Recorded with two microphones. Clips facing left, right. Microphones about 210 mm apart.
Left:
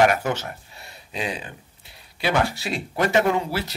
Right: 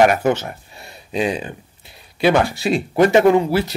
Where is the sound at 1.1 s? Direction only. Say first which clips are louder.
Right 9 dB; 20° right (ahead or behind).